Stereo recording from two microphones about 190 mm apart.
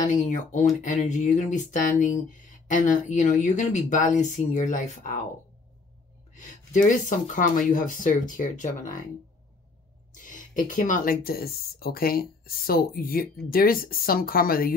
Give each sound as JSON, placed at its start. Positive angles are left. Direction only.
{"t": 0.0, "sound": "speech", "side_deg": 40}
{"t": 6.3, "sound": "speech", "side_deg": 40}
{"t": 10.1, "sound": "speech", "side_deg": 45}